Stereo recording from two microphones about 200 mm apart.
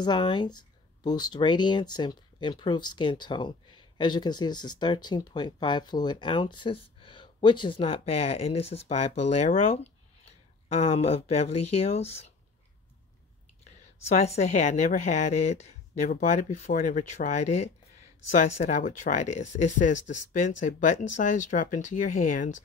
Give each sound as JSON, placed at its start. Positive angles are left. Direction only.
{"t": 0.0, "sound": "speech", "side_deg": 20}
{"t": 10.7, "sound": "a woman's voice", "side_deg": 30}
{"t": 13.9, "sound": "a woman's voice", "side_deg": 35}